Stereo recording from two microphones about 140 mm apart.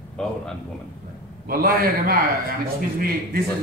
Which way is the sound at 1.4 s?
90° right.